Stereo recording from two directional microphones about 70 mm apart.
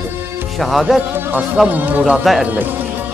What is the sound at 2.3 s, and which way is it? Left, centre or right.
Speech, centre.